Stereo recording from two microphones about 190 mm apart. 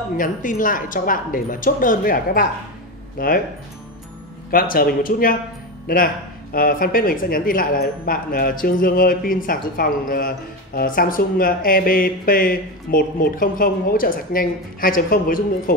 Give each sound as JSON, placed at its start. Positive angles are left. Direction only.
{"t": 0.2, "sound": "speech", "side_deg": 45}
{"t": 4.5, "sound": "speech", "side_deg": 50}